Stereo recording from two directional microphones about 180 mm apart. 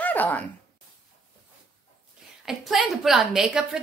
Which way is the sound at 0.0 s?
10° left (ahead or behind).